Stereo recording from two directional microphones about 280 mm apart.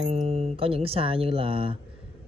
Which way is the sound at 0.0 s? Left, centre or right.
Right.